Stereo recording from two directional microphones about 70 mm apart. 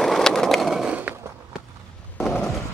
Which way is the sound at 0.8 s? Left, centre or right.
Right.